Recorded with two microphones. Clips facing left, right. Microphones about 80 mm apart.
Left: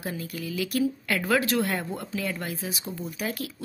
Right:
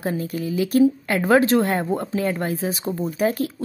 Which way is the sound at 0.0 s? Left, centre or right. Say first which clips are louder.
Right 8 dB; right.